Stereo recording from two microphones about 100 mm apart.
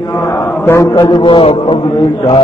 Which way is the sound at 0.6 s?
30° left (ahead or behind).